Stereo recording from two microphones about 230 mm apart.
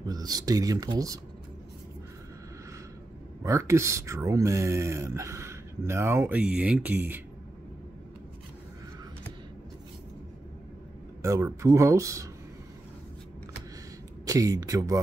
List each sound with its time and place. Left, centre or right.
0.0 s speech: centre
3.4 s speech: centre
11.2 s speech: centre
14.2 s speech: centre